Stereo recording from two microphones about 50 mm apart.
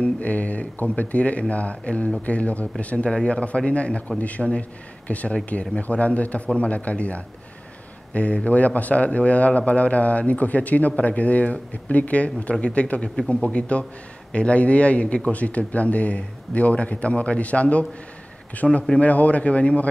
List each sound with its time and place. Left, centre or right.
0.0 s speech: left